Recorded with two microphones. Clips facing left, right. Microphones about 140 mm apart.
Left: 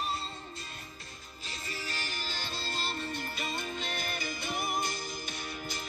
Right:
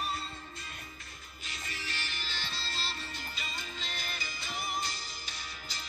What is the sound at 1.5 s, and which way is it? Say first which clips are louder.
Music: left 3 dB; 40° left (ahead or behind).